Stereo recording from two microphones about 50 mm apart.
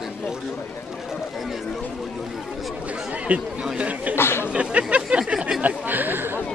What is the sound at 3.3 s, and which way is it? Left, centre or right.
Speech, right.